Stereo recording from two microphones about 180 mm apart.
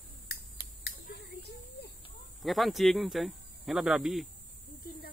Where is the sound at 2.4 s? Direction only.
Centre (ahead or behind).